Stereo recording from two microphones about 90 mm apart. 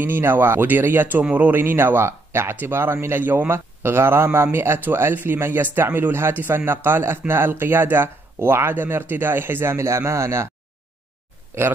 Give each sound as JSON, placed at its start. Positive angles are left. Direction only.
{"t": 0.0, "sound": "speech", "side_deg": -25}
{"t": 11.5, "sound": "speech", "side_deg": -30}